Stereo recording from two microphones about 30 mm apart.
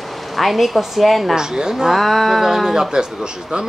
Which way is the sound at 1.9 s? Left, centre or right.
Centre.